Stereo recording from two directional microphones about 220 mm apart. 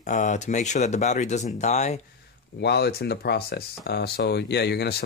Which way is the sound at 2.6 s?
50° left (ahead or behind).